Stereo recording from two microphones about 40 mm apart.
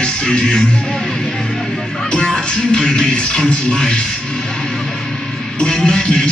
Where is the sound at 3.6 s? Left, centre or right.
Centre.